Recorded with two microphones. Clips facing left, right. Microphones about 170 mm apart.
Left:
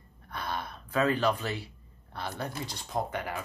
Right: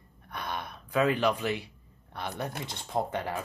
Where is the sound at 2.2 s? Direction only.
20° right (ahead or behind).